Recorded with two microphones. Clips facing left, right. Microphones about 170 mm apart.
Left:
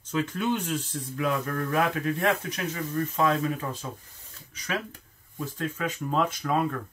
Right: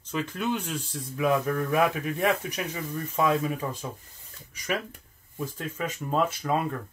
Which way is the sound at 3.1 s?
10° right (ahead or behind).